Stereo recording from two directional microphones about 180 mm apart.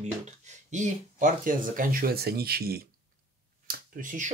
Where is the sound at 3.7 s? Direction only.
50° right (ahead or behind).